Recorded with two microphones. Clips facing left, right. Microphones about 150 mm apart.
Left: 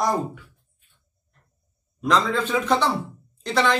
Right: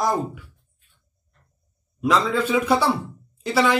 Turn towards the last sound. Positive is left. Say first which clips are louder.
# right 2 dB
turn(degrees=-5)  # may be behind; listen again after turning